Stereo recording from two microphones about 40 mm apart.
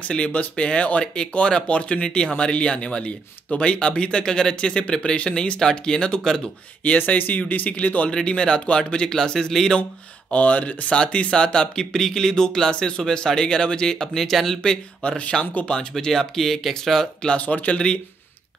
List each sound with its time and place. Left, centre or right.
0.0 s speech: left
1.0 s speech: left
7.1 s speech: left
8.1 s speech: left
10.3 s speech: left; by 15.0 s centre
15.0 s speech: left
16.1 s speech: centre
17.4 s speech: left